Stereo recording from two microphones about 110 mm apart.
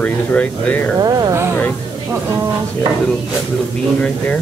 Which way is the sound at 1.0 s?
35° right (ahead or behind).